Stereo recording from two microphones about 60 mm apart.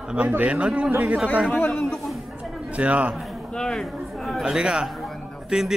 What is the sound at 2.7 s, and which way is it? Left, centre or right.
Speech, right.